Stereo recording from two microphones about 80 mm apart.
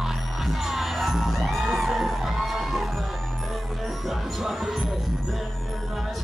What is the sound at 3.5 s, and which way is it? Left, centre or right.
Music, centre.